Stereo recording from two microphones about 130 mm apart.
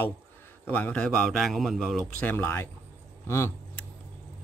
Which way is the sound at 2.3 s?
15° left (ahead or behind).